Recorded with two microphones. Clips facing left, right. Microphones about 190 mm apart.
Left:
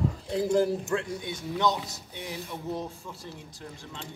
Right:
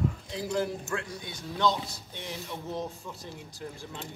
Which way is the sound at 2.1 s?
5° left (ahead or behind).